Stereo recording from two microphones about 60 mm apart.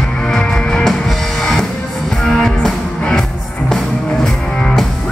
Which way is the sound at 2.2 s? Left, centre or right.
Centre.